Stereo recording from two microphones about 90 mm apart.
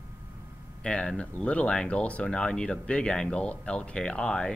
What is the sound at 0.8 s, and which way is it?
Speech, 10° left (ahead or behind).